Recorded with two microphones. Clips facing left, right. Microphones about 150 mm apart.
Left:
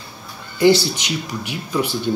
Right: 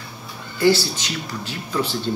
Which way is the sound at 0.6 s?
15° left (ahead or behind).